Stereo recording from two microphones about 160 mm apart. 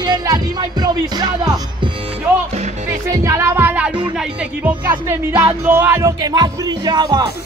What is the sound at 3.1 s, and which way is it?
Speech, 15° right (ahead or behind).